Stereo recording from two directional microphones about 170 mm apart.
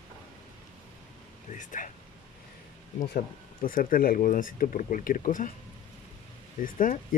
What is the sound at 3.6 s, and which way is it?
Speech, 55° left (ahead or behind).